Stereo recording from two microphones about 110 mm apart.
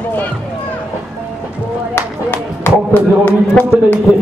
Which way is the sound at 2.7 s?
15° left (ahead or behind).